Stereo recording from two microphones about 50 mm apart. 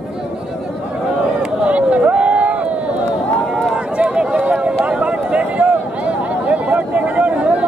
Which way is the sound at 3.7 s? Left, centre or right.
Right.